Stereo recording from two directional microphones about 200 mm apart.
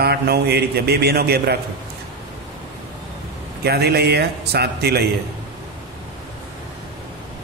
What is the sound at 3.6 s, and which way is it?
A man's voice, 55° right (ahead or behind).